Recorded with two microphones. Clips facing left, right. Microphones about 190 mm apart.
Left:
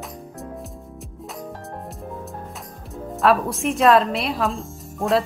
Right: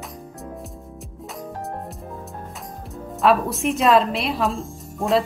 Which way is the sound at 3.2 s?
Centre (ahead or behind).